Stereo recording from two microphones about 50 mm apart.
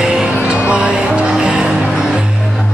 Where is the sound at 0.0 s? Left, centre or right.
Right.